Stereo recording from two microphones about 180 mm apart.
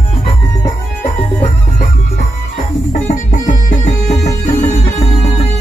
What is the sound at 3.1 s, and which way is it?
Music, 45° left (ahead or behind).